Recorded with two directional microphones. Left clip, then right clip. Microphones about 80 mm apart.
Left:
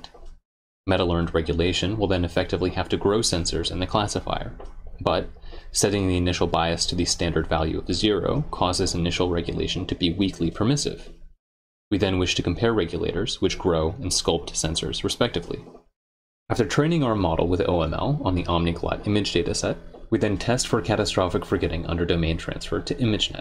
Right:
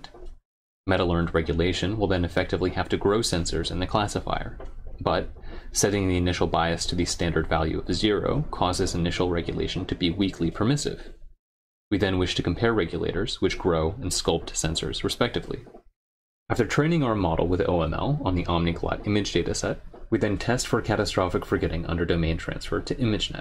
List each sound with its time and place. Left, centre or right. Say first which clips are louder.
0.8 s speech: left 1 dB; left